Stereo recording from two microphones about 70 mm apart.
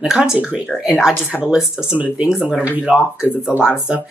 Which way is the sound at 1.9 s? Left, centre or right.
Right.